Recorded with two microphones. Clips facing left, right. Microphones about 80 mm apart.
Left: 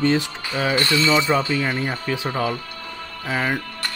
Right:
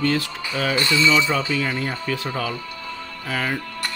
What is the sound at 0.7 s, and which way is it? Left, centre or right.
Speech, left.